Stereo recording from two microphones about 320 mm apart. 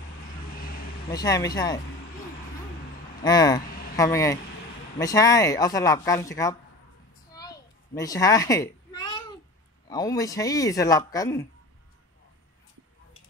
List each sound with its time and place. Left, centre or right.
0.6 s vehicle: left
1.1 s speech: centre
3.3 s speech: centre
7.3 s cat: centre
9.8 s speech: centre